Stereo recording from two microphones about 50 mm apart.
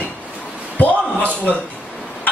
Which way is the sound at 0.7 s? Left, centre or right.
Left.